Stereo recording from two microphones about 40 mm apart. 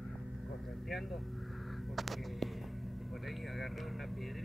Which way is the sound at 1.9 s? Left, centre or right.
Centre.